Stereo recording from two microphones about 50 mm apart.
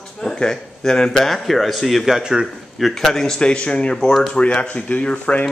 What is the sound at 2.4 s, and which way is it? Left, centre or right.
Speech, centre.